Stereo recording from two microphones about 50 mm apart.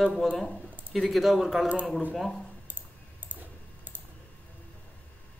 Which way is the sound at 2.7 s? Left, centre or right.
Right.